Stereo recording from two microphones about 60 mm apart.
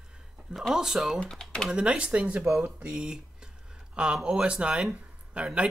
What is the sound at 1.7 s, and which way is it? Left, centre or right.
Speech, centre.